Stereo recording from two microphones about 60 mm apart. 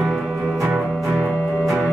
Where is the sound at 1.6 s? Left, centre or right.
Centre.